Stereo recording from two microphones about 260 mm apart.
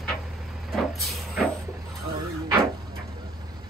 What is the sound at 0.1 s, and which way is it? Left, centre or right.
Vehicle, centre.